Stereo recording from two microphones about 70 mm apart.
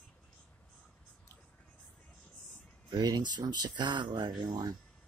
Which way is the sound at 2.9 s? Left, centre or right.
Right.